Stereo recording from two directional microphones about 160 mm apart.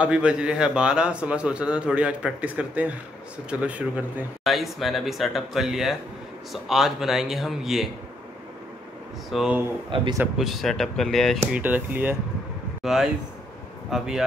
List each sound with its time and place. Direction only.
0.0 s a man's voice: 5° right (ahead or behind)
9.3 s a man's voice: 5° right (ahead or behind)
9.8 s a man's voice: 30° right (ahead or behind)
10.3 s a man's voice: centre (ahead or behind)
11.3 s a man's voice: 10° right (ahead or behind)